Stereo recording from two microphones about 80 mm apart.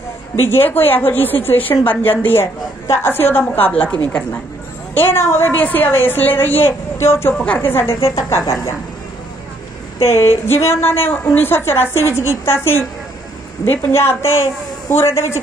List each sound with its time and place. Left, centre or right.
0.5 s a woman's voice: left
4.9 s a woman's voice: left
7.3 s a woman's voice: centre
7.7 s a woman's voice: left
10.1 s a woman's voice: left